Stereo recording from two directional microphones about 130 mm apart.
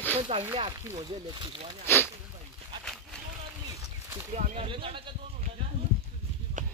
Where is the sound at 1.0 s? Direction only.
40° right (ahead or behind).